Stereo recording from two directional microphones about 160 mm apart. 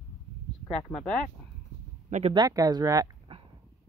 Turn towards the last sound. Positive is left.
turn(degrees=-25)  # may be behind; listen again after turning